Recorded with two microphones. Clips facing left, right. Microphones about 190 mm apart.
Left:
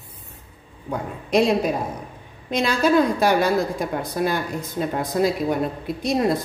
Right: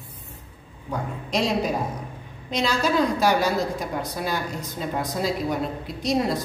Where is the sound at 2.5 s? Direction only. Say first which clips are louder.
Left 4 dB; 55° left (ahead or behind).